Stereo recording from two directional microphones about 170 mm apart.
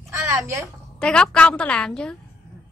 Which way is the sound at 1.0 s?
5° left (ahead or behind).